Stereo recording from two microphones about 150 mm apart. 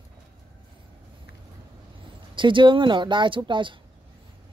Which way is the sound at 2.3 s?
35° right (ahead or behind).